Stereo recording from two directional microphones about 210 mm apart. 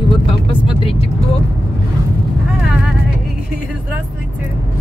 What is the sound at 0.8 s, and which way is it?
Speech, 25° left (ahead or behind).